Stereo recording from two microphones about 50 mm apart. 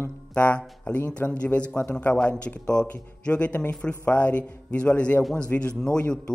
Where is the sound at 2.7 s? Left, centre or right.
Left.